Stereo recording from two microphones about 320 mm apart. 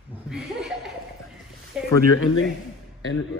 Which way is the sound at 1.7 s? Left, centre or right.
Centre.